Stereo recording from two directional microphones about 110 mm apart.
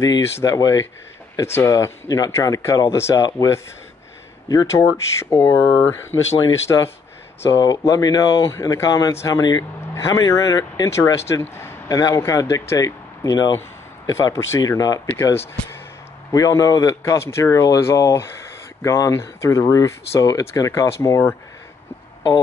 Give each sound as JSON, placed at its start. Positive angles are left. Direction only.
{"t": 0.0, "sound": "speech", "side_deg": 30}
{"t": 7.4, "sound": "speech", "side_deg": 35}
{"t": 11.5, "sound": "a sound", "side_deg": 20}
{"t": 12.0, "sound": "speech", "side_deg": 30}